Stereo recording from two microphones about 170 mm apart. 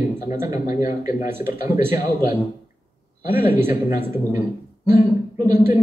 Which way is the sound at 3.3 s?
10° right (ahead or behind).